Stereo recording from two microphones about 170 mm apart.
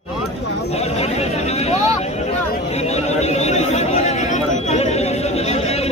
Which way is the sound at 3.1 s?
40° left (ahead or behind).